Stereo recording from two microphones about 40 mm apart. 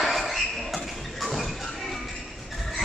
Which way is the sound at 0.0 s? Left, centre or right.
Centre.